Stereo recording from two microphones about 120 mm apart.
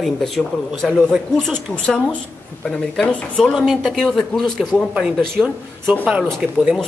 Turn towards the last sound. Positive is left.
turn(degrees=-5)  # may be behind; listen again after turning